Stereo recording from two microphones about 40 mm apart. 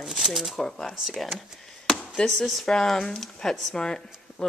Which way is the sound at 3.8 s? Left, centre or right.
Left.